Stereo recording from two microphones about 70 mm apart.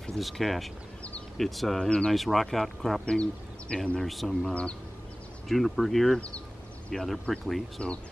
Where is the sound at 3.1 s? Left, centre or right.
Centre.